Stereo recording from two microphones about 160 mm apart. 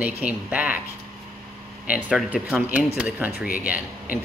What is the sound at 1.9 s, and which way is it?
A man's voice, 10° right (ahead or behind).